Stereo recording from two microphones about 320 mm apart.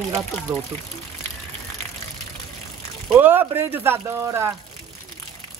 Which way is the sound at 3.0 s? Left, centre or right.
Centre.